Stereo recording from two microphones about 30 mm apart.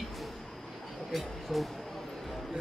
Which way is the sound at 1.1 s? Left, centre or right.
Centre.